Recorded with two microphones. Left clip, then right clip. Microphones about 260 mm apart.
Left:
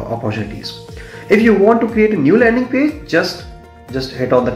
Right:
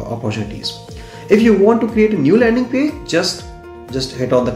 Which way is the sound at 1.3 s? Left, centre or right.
Centre.